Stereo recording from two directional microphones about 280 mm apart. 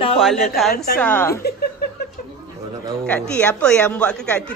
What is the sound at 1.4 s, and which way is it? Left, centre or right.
Speech, left.